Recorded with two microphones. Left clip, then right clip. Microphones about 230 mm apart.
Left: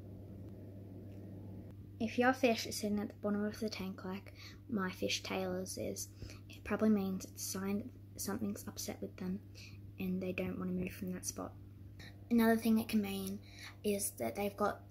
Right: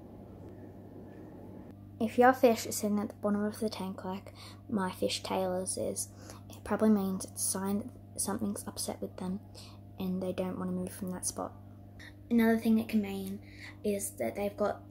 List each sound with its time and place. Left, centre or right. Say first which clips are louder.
2.0 s speech: right 8 dB; centre